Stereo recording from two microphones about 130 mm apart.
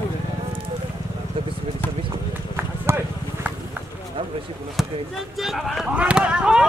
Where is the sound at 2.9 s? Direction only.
20° right (ahead or behind).